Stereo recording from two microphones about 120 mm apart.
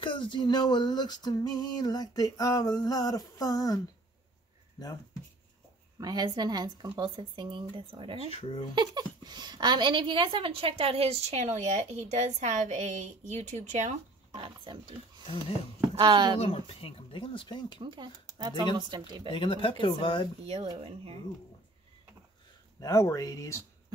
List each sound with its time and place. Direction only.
0.0 s speech: 45° left (ahead or behind)
5.9 s speech: 35° right (ahead or behind)
8.3 s speech: 55° left (ahead or behind)
8.7 s speech: 35° right (ahead or behind); by 13.9 s 75° right (ahead or behind)
14.3 s speech: 45° right (ahead or behind)
16.0 s speech: 40° right (ahead or behind)
16.3 s speech: 50° left (ahead or behind)
17.8 s speech: 40° right (ahead or behind)
19.3 s speech: 45° left (ahead or behind)
20.4 s speech: 55° right (ahead or behind)
22.8 s speech: 30° left (ahead or behind)